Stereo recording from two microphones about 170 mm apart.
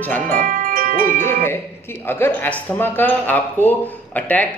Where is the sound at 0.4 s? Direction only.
55° right (ahead or behind).